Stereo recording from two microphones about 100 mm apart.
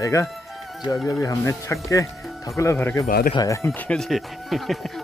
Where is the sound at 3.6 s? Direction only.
20° left (ahead or behind).